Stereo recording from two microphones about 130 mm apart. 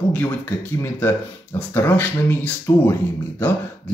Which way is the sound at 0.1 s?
15° left (ahead or behind).